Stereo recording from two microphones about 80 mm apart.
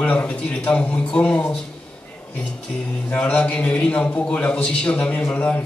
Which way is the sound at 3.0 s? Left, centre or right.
Centre.